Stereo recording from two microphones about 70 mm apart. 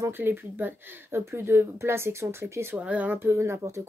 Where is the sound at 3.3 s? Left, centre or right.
Right.